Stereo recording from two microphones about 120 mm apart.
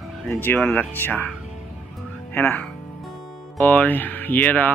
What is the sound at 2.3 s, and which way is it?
Speech, 15° left (ahead or behind).